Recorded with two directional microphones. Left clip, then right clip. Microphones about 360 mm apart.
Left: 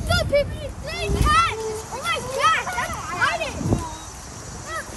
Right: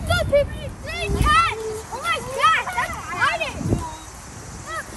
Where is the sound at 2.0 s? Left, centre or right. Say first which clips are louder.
Right 2 dB; centre.